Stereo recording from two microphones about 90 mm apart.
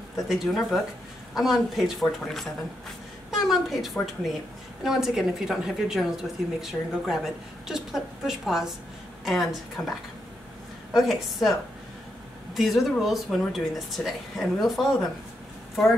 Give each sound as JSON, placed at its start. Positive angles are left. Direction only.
{"t": 0.3, "sound": "speech", "side_deg": 0}
{"t": 9.8, "sound": "speech", "side_deg": 20}
{"t": 10.9, "sound": "speech", "side_deg": 0}
{"t": 12.5, "sound": "speech", "side_deg": 0}